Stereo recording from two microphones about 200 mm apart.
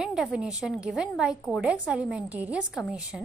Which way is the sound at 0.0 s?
Centre (ahead or behind).